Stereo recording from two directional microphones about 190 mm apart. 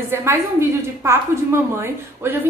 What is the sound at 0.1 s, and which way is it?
A woman's voice, 15° right (ahead or behind).